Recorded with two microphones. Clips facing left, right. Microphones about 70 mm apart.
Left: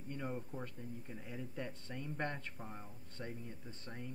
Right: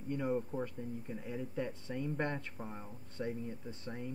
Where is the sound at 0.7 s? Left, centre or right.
Centre.